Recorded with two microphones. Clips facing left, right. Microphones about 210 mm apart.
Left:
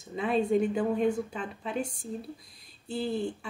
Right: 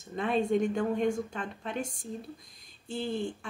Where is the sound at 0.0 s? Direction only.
Centre (ahead or behind).